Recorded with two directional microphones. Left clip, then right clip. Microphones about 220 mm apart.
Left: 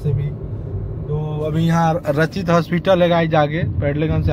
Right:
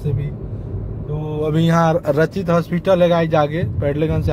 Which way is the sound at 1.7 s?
25° right (ahead or behind).